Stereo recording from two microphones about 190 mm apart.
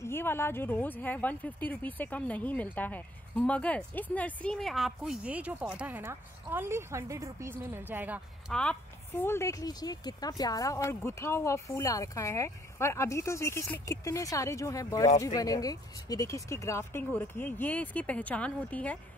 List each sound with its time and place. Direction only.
0.0 s speech: 10° left (ahead or behind); by 8.5 s 10° right (ahead or behind)
8.5 s speech: 10° left (ahead or behind)